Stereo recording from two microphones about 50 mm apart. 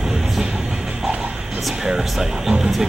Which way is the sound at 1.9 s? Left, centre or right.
Centre.